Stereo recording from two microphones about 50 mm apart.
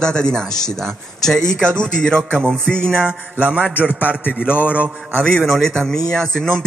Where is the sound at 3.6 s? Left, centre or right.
Left.